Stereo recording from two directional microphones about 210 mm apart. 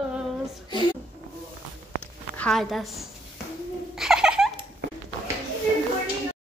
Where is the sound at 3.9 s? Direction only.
Centre (ahead or behind).